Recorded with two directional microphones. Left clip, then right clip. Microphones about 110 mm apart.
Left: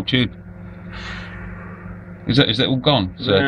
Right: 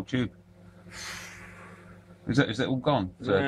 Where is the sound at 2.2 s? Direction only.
5° right (ahead or behind).